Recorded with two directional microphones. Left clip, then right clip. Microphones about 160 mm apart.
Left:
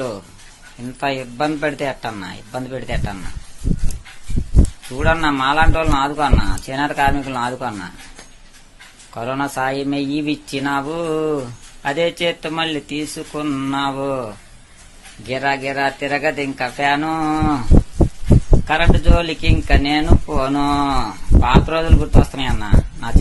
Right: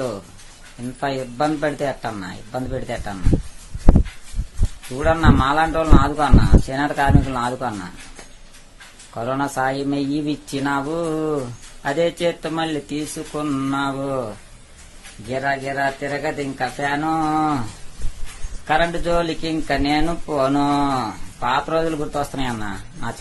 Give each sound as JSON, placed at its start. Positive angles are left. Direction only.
{"t": 0.9, "sound": "speech", "side_deg": -5}
{"t": 4.9, "sound": "speech", "side_deg": -5}
{"t": 9.1, "sound": "speech", "side_deg": -5}
{"t": 15.4, "sound": "speech", "side_deg": 30}
{"t": 16.3, "sound": "speech", "side_deg": 20}
{"t": 17.3, "sound": "a man's voice", "side_deg": 5}
{"t": 18.7, "sound": "a man's voice", "side_deg": 0}
{"t": 22.2, "sound": "speech", "side_deg": -15}